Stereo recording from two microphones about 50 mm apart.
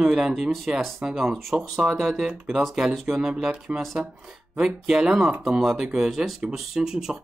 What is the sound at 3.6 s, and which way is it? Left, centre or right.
Speech, centre.